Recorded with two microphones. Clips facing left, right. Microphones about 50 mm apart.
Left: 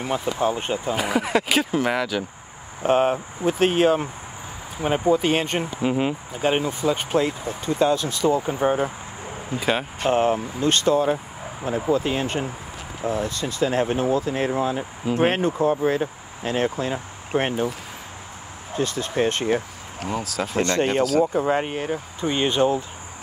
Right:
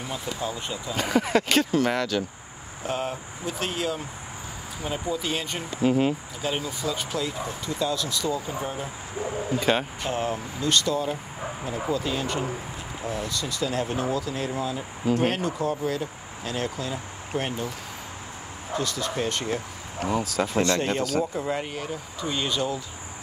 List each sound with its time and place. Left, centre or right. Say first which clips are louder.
0.0 s speech: left 8 dB; left
0.9 s speech: right 1 dB; centre
2.8 s speech: left 10 dB; left
5.8 s speech: right 2 dB; centre
6.4 s speech: left 8 dB; left
9.6 s speech: left 1 dB; centre
9.9 s speech: left 8 dB; left
18.8 s speech: left 5 dB; left
20.0 s speech: right 1 dB; centre
20.6 s speech: left 4 dB; left